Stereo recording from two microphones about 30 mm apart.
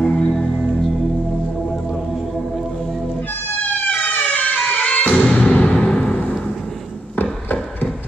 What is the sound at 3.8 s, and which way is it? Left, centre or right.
Music, left.